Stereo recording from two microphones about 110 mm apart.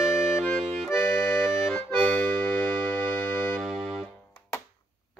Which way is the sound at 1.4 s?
5° right (ahead or behind).